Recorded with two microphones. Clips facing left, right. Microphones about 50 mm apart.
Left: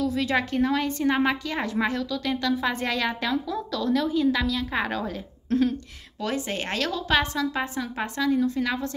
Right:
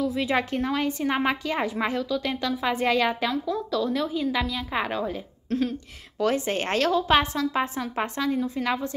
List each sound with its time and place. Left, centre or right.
0.1 s a woman's voice: centre
3.3 s a woman's voice: centre
5.5 s speech: centre
6.2 s a woman's voice: right